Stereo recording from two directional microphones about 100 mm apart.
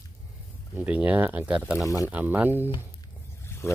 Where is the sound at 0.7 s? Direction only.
15° right (ahead or behind).